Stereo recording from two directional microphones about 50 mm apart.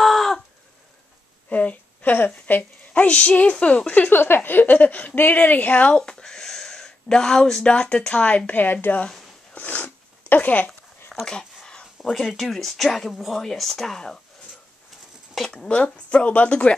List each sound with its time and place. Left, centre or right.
0.0 s chicken: centre
1.5 s a sound: left
2.3 s a woman's voice: left
5.9 s speech: centre; by 8.7 s left
9.5 s a sound: left
11.2 s speech: centre
15.5 s speech: centre